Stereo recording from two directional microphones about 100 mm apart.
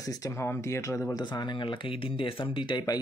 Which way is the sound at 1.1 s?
45° left (ahead or behind).